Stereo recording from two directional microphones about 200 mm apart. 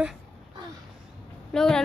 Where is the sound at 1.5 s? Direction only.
5° left (ahead or behind).